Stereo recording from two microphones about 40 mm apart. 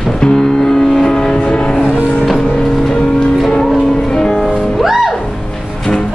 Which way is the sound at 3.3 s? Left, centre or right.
Centre.